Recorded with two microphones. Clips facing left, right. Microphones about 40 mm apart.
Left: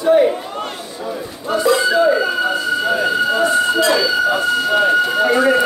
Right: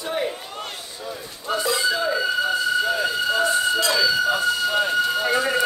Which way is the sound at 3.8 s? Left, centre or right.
Left.